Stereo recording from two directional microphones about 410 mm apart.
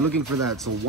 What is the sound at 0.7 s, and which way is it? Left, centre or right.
Speech, right.